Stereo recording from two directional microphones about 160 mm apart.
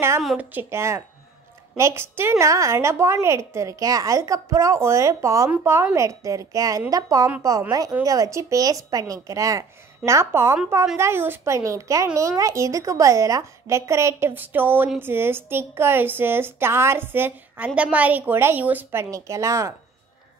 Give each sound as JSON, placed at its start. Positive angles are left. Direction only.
{"t": 0.4, "sound": "a woman's voice", "side_deg": -10}